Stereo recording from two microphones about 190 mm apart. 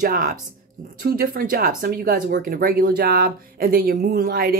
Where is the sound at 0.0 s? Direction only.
45° right (ahead or behind).